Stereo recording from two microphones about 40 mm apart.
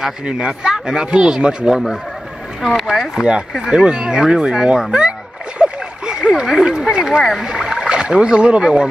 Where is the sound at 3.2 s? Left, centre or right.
Right.